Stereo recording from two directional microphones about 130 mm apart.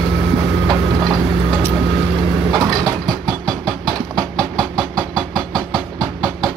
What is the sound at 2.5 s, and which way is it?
Vehicle, centre (ahead or behind).